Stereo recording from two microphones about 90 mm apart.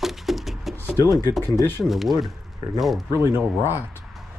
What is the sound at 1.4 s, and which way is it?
Speech, 30° left (ahead or behind).